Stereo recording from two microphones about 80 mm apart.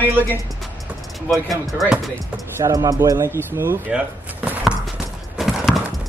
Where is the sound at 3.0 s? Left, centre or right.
Right.